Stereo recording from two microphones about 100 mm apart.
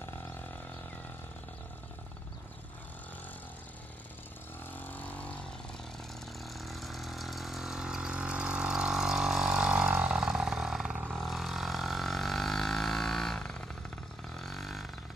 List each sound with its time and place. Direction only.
4.7 s vehicle: 20° left (ahead or behind)
6.4 s vehicle: centre (ahead or behind)
11.1 s a sound: centre (ahead or behind)
14.4 s vehicle: centre (ahead or behind)